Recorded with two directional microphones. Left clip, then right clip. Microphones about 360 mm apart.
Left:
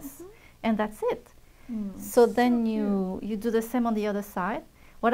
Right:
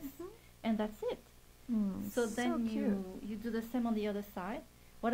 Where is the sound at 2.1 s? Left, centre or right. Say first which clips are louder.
Left 15 dB; left.